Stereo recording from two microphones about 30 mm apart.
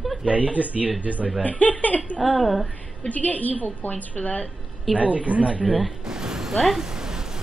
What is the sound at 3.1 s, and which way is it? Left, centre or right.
A woman's voice, left.